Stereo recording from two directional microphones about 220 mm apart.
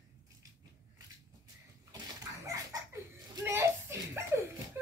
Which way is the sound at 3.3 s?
10° right (ahead or behind).